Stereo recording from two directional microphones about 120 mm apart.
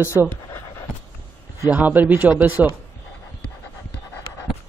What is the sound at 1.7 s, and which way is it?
A man's voice, 15° right (ahead or behind).